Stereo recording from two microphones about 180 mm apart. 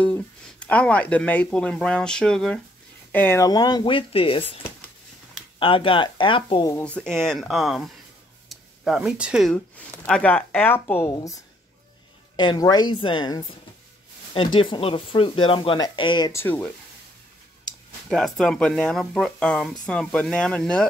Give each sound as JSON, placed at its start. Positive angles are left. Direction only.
{"t": 0.0, "sound": "speech", "side_deg": 5}
{"t": 5.6, "sound": "speech", "side_deg": 30}
{"t": 6.8, "sound": "speech", "side_deg": 5}
{"t": 18.0, "sound": "speech", "side_deg": 0}